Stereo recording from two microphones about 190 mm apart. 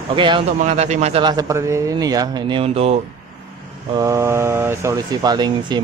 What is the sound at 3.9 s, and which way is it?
Speech, 15° right (ahead or behind).